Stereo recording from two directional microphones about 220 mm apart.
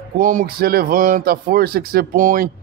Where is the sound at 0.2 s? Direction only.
40° right (ahead or behind).